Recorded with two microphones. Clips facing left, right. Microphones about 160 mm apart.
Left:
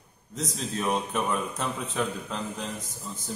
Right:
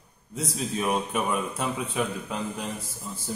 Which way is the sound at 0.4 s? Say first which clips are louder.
Right 2 dB; 5° right (ahead or behind).